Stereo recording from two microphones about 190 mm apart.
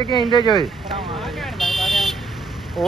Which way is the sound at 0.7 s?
Centre (ahead or behind).